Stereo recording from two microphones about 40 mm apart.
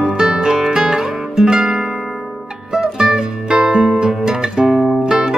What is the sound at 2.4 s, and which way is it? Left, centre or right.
Music, centre.